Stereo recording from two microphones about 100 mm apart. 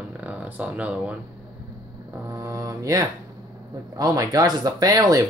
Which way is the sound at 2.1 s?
30° right (ahead or behind).